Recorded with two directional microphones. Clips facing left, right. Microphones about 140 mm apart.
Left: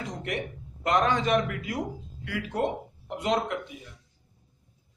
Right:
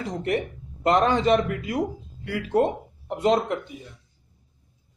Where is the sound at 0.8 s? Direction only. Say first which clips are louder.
Right 5 dB; 30° right (ahead or behind).